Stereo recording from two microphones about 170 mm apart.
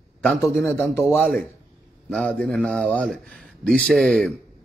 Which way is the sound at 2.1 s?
5° left (ahead or behind).